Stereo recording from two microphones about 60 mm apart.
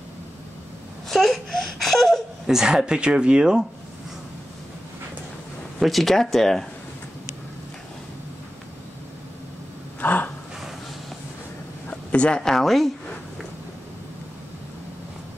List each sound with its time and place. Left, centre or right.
1.0 s wail: centre
2.5 s speech: centre
5.8 s speech: centre
9.9 s gasp: left
11.9 s speech: left; by 12.9 s centre